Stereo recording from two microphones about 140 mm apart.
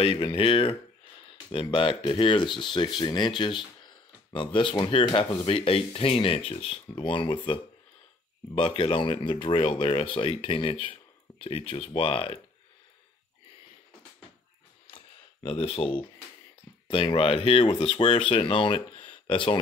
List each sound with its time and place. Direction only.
0.0 s speech: 40° left (ahead or behind)
14.9 s a sound: 40° left (ahead or behind)
16.8 s speech: 35° left (ahead or behind)